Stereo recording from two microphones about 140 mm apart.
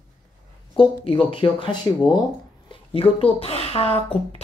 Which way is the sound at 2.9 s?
45° left (ahead or behind).